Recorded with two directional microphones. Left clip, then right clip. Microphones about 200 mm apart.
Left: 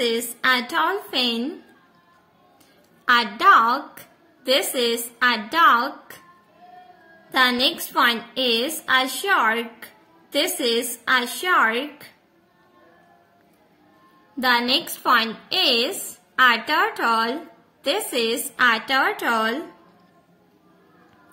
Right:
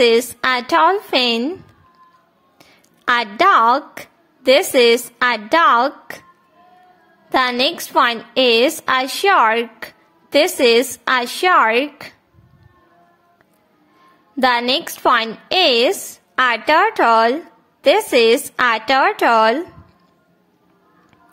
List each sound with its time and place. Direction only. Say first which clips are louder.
0.0 s a woman's voice: right 8 dB; 40° right (ahead or behind)
3.1 s a woman's voice: right 2 dB; 40° right (ahead or behind)
7.2 s a woman's voice: right 3 dB; 40° right (ahead or behind)
14.4 s a woman's voice: right 4 dB; 45° right (ahead or behind)